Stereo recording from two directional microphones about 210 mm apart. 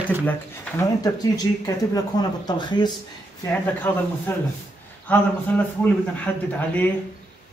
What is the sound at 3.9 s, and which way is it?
Speech, 10° left (ahead or behind).